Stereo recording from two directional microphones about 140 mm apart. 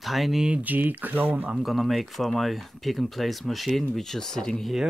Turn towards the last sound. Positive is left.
turn(degrees=0)  # may be behind; listen again after turning